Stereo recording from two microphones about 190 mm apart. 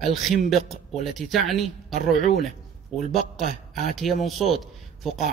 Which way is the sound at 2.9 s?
35° right (ahead or behind).